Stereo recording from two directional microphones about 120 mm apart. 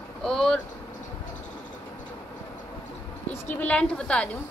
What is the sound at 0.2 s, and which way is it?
Vehicle, 5° left (ahead or behind).